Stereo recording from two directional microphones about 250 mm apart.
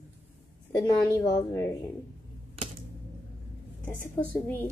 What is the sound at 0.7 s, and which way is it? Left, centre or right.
A woman's voice, centre.